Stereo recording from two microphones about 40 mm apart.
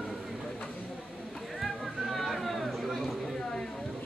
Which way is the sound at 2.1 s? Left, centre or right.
Centre.